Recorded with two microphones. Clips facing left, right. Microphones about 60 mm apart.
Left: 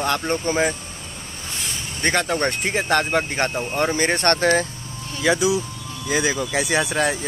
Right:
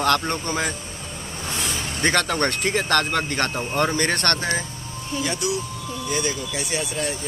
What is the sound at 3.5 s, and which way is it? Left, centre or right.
Speech, centre.